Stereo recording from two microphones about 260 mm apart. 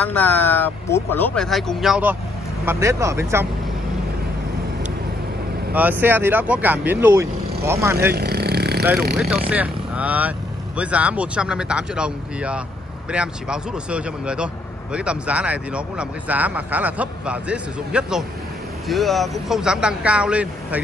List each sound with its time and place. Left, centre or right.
0.1 s speech: centre
5.7 s speech: centre
8.2 s vehicle: right
9.1 s speech: centre